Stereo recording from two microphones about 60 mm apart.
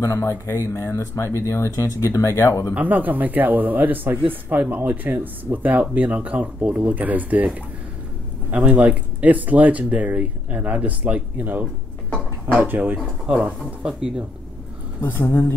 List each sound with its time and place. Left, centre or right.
0.0 s speech: left
2.7 s a man's voice: right
8.5 s speech: right
15.0 s speech: left